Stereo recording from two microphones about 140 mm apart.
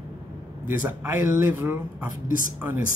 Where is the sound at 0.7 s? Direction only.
15° right (ahead or behind).